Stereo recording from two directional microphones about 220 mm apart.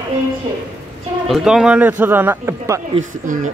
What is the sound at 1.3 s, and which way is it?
Speech, centre (ahead or behind).